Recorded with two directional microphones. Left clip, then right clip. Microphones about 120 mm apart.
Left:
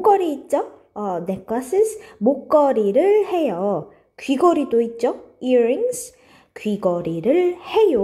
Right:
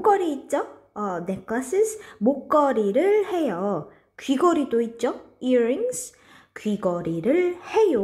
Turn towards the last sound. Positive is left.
turn(degrees=20)  # may be behind; listen again after turning